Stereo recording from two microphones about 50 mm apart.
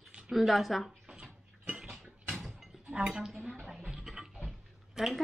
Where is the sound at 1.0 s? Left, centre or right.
Centre.